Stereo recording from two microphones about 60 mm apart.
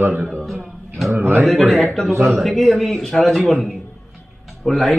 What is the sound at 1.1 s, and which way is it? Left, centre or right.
Speech, right.